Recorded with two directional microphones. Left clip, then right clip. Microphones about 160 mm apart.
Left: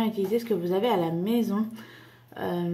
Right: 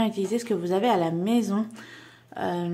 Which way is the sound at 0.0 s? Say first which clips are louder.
Even; 25° right (ahead or behind).